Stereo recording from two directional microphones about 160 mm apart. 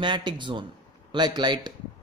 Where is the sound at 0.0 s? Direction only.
30° right (ahead or behind).